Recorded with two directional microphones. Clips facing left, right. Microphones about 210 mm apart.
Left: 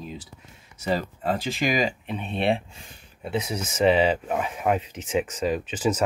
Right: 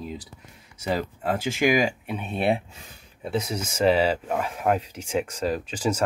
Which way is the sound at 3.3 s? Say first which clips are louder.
Even; 5° left (ahead or behind).